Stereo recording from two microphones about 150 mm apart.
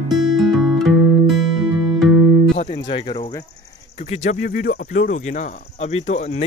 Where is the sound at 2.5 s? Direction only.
50° left (ahead or behind).